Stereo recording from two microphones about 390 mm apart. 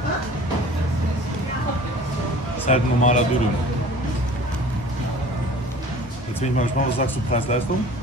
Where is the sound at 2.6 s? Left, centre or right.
Centre.